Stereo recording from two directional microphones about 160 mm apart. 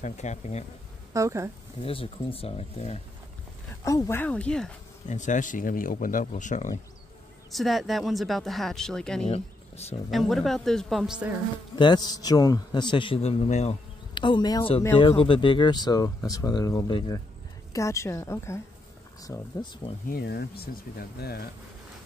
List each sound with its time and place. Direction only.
0.0 s speech: 45° left (ahead or behind)
1.1 s speech: 20° right (ahead or behind)
1.8 s speech: 35° left (ahead or behind)
3.8 s speech: 20° left (ahead or behind)
5.0 s speech: 50° left (ahead or behind)
7.5 s speech: centre (ahead or behind)
9.3 s speech: 40° left (ahead or behind)
10.1 s speech: centre (ahead or behind)
11.7 s a man's voice: 30° left (ahead or behind)
14.1 s a man's voice: 30° left (ahead or behind)
17.7 s a man's voice: 20° left (ahead or behind)
20.1 s speech: 80° left